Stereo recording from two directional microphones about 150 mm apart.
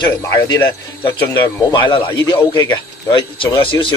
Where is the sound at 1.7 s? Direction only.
30° left (ahead or behind).